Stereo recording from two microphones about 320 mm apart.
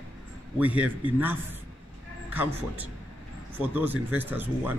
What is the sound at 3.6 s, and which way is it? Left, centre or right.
Speech, centre.